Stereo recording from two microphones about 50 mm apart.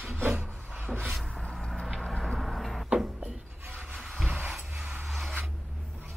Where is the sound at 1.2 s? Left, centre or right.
Centre.